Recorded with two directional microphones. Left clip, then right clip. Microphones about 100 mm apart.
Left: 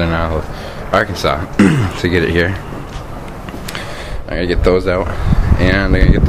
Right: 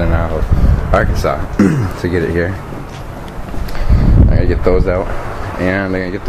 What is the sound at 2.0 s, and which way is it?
Speech, 50° left (ahead or behind).